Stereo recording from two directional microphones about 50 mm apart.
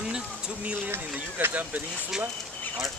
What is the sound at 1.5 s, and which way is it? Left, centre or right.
Speech, right.